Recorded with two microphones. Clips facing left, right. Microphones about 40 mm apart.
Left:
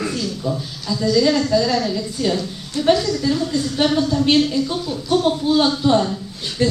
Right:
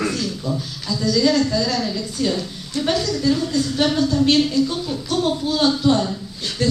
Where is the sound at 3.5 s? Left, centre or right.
Centre.